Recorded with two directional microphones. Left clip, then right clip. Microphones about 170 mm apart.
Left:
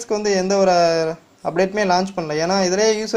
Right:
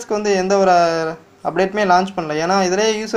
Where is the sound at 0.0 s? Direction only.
30° left (ahead or behind).